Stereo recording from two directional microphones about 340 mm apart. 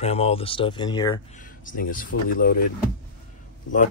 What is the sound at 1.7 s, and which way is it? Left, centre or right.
Speech, left.